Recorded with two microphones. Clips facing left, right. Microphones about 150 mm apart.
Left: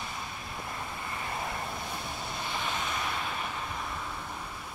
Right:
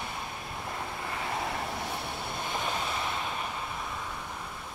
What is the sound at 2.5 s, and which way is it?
Vehicle, 40° right (ahead or behind).